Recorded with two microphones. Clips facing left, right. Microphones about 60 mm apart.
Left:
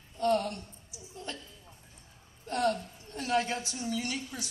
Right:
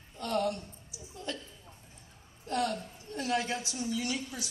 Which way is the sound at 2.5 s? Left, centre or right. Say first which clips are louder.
Left 2 dB; left.